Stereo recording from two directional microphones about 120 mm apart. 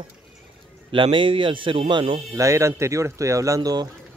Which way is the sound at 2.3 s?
25° right (ahead or behind).